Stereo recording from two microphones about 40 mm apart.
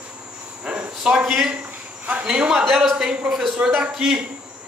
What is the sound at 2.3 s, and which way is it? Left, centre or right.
Speech, right.